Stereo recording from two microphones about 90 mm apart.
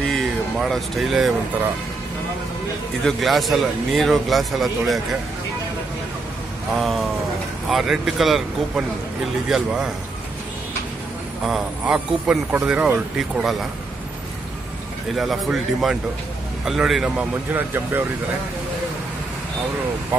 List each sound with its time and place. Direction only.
0.1 s a sound: centre (ahead or behind)
3.0 s a man's voice: 5° left (ahead or behind)
6.8 s a man's voice: centre (ahead or behind)
11.8 s speech: 10° right (ahead or behind)
15.1 s a man's voice: centre (ahead or behind)
17.2 s speech: 20° right (ahead or behind)